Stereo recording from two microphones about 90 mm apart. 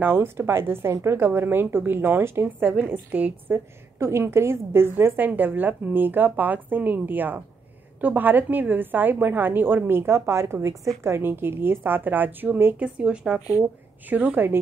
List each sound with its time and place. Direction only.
0.0 s a woman's voice: 25° right (ahead or behind)
12.8 s a woman's voice: 10° right (ahead or behind)